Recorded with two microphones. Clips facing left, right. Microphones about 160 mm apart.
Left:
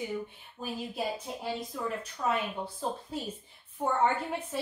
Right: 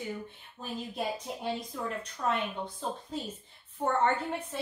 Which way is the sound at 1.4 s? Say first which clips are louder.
Left 1 dB; centre (ahead or behind).